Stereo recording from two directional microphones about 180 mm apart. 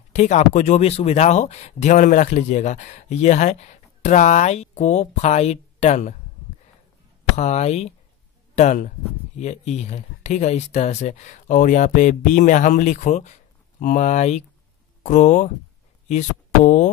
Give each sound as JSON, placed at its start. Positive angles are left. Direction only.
{"t": 0.1, "sound": "speech", "side_deg": 40}
{"t": 7.3, "sound": "speech", "side_deg": 40}